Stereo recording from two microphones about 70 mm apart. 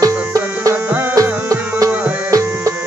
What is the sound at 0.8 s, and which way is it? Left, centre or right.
Music, right.